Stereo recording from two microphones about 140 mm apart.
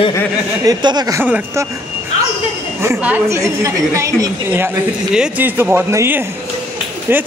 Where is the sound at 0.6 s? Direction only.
30° right (ahead or behind).